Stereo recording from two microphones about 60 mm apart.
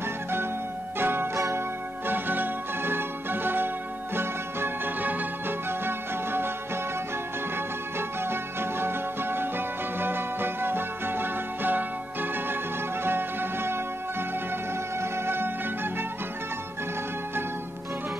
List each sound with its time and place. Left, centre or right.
0.9 s music: right
8.2 s music: right
15.0 s music: right